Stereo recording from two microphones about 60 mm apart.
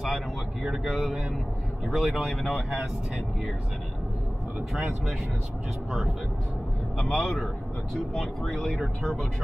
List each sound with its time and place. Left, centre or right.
0.0 s a sound: centre
0.8 s speech: centre
4.6 s speech: centre